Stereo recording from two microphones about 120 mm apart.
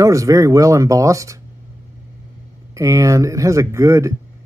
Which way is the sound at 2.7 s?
25° right (ahead or behind).